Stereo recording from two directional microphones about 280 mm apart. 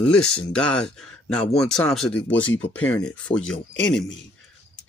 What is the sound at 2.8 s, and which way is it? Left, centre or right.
Speech, centre.